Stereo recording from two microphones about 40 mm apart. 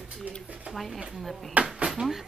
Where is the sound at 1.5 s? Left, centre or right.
Right.